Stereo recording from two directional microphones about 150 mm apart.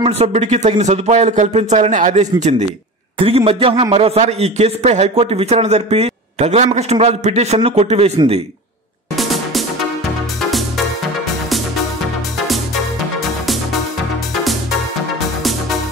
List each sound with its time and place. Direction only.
0.0 s a man's voice: 45° right (ahead or behind)
3.2 s a man's voice: 40° right (ahead or behind)
9.1 s music: centre (ahead or behind)